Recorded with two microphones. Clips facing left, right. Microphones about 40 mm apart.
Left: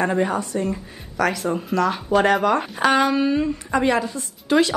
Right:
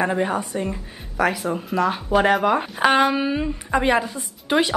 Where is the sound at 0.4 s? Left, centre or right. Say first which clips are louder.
Left 2 dB; centre.